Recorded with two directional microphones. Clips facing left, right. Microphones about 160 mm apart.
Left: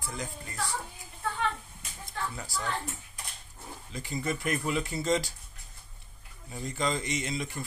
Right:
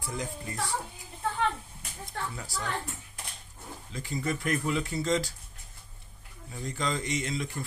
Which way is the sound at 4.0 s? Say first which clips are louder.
Right 1 dB; 5° left (ahead or behind).